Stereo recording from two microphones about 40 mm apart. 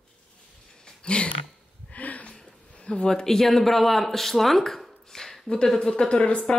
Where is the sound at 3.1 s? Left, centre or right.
Centre.